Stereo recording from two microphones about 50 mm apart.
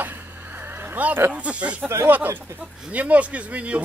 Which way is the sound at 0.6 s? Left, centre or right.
Right.